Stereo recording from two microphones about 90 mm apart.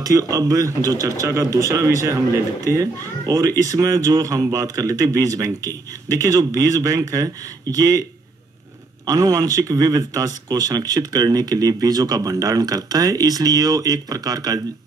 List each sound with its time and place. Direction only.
0.0 s speech: 40° right (ahead or behind)
9.0 s speech: 45° right (ahead or behind)